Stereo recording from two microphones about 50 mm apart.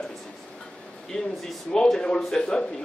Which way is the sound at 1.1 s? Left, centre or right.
Centre.